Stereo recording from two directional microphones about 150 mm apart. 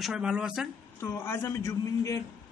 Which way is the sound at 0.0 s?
5° right (ahead or behind).